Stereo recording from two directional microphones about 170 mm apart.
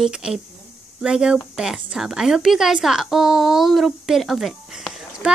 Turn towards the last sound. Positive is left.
turn(degrees=-5)  # may be behind; listen again after turning